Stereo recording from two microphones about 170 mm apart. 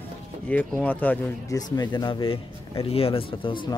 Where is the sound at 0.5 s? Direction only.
10° left (ahead or behind).